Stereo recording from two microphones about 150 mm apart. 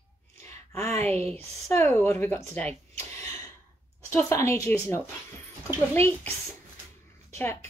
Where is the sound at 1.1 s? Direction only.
15° left (ahead or behind).